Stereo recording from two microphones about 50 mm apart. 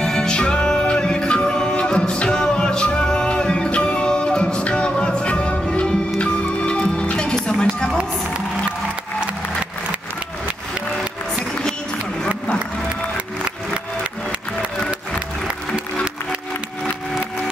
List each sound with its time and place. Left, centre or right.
0.0 s music: centre
14.9 s music: right